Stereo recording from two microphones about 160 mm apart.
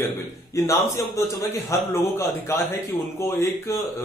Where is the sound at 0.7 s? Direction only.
20° left (ahead or behind).